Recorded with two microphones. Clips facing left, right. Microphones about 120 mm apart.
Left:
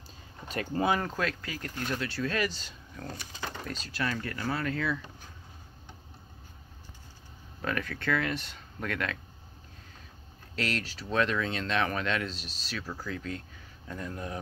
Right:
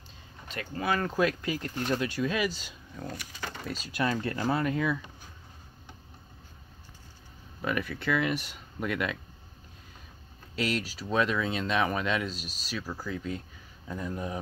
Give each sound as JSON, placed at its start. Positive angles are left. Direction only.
{"t": 0.5, "sound": "speech", "side_deg": 35}
{"t": 1.1, "sound": "speech", "side_deg": -15}
{"t": 3.9, "sound": "speech", "side_deg": -20}
{"t": 7.6, "sound": "speech", "side_deg": -15}
{"t": 10.5, "sound": "speech", "side_deg": -10}